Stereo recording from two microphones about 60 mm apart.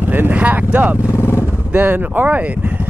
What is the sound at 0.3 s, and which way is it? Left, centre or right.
Speech, right.